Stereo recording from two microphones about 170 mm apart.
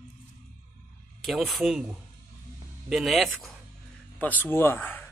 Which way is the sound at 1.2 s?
Centre (ahead or behind).